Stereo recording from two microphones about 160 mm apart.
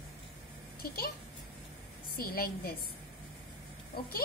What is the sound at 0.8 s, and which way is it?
Speech, 65° left (ahead or behind).